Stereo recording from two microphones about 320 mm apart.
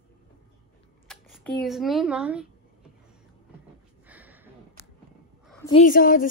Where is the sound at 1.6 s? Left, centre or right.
Centre.